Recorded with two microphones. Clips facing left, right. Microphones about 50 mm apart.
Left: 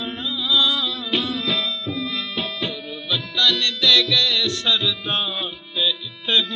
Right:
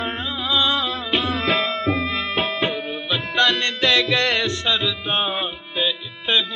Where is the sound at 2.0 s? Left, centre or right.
Right.